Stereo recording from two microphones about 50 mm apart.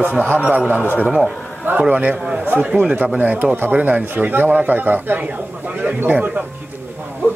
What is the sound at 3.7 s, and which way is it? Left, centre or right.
A man's voice, right.